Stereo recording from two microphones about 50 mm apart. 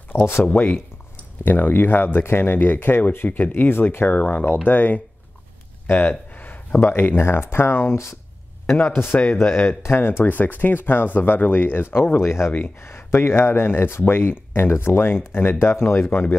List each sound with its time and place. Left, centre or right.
0.1 s speech: left
4.1 s speech: left
5.9 s a sound: left
6.8 s speech: left
8.7 s a man's voice: left
9.7 s speech: left
12.2 s speech: left